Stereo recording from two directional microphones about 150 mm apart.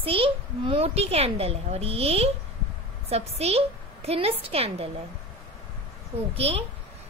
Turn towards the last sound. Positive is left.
turn(degrees=-40)  # may be behind; listen again after turning